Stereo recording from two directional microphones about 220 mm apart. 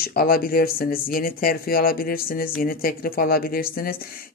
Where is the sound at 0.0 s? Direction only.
45° left (ahead or behind).